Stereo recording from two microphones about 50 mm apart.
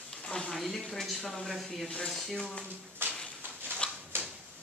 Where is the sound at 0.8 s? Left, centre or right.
Centre.